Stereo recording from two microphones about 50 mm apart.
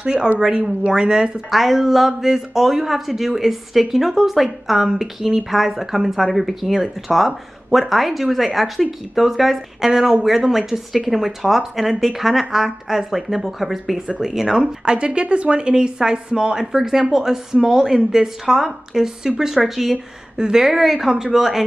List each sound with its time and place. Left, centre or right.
0.0 s a woman's voice: centre
1.5 s a woman's voice: centre